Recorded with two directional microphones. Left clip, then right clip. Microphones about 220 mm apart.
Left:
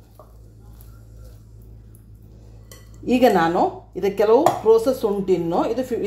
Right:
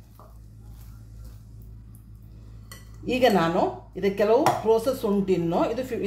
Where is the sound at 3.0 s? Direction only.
25° left (ahead or behind).